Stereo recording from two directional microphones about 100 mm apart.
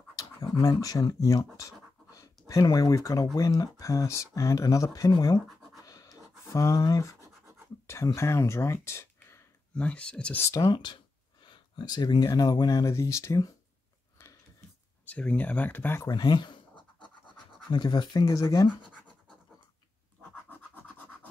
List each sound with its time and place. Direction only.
0.1 s scratch: 35° left (ahead or behind)
0.7 s speech: 35° left (ahead or behind)
5.9 s a sound: 35° left (ahead or behind)
7.8 s speech: 30° left (ahead or behind); by 10.4 s 10° left (ahead or behind)
10.4 s speech: 40° left (ahead or behind)
11.4 s a sound: 50° left (ahead or behind)
12.3 s speech: 35° left (ahead or behind)
15.0 s speech: 15° left (ahead or behind)
16.1 s scratch: 45° left (ahead or behind)
17.6 s speech: 45° left (ahead or behind)
20.2 s scratch: 20° left (ahead or behind)